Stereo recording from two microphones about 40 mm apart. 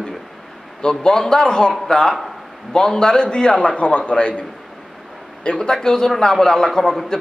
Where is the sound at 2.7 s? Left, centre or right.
Centre.